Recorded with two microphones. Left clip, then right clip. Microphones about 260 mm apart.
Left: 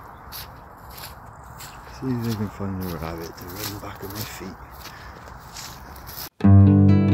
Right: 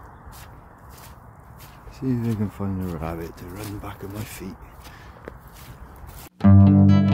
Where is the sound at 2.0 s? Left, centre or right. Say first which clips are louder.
Right 1 dB; right.